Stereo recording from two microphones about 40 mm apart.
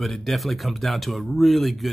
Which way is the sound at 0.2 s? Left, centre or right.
Centre.